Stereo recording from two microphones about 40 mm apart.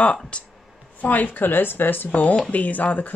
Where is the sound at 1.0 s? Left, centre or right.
Left.